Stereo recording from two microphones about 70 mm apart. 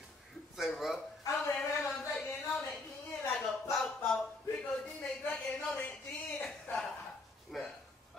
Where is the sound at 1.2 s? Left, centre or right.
Left.